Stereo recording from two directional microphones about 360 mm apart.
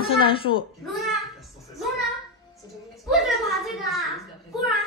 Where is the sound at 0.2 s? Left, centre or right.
Centre.